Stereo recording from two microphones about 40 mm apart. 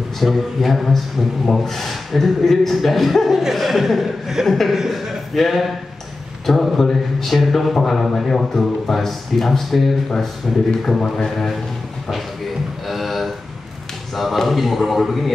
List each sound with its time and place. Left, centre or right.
0.2 s speech: centre
11.0 s a man's voice: centre
12.8 s a sound: centre
14.1 s speech: centre